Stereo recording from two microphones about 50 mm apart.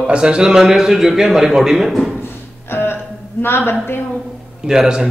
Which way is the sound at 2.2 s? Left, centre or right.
Left.